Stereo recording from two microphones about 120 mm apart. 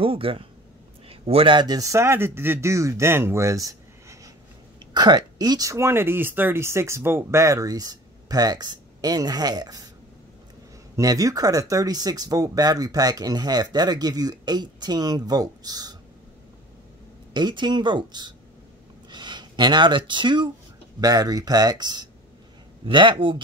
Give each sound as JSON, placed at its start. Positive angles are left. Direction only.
{"t": 0.0, "sound": "a man's voice", "side_deg": -50}
{"t": 11.0, "sound": "speech", "side_deg": -30}
{"t": 17.3, "sound": "speech", "side_deg": -40}